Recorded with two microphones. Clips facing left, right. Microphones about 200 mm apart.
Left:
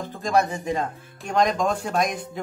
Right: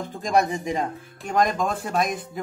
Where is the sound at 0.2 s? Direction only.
15° right (ahead or behind).